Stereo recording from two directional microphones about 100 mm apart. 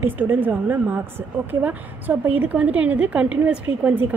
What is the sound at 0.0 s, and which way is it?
A woman's voice, 20° right (ahead or behind).